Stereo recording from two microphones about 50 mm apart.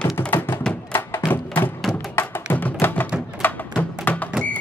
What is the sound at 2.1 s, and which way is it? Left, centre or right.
Music, left.